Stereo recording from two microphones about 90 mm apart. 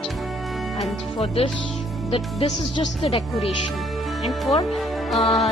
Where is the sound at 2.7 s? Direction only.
85° left.